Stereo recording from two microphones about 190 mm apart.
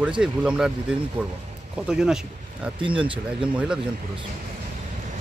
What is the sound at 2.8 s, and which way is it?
Speech, 25° right (ahead or behind).